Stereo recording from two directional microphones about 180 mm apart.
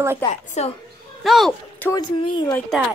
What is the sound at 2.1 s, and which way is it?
Speech, 25° left (ahead or behind).